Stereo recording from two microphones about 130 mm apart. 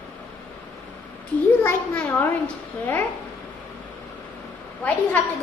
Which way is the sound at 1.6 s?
15° left (ahead or behind).